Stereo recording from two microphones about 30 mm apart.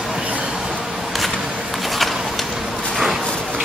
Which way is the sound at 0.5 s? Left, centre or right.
Centre.